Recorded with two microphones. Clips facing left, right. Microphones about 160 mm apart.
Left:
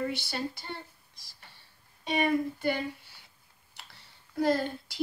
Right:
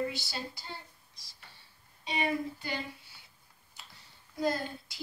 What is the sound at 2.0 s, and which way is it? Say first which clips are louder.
Speech: left 5 dB; 55° left (ahead or behind).